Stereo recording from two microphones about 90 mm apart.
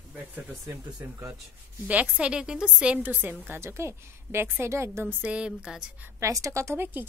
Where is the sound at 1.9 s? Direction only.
15° right (ahead or behind); by 5.0 s 30° right (ahead or behind).